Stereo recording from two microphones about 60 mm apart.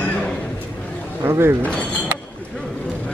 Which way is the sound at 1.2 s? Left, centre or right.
Right.